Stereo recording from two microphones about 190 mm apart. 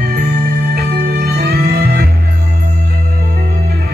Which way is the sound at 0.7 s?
55° right (ahead or behind).